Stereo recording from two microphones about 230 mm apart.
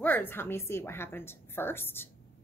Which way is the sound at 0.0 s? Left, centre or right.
Centre.